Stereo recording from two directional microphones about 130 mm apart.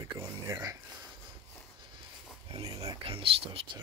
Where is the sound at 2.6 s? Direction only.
25° right (ahead or behind).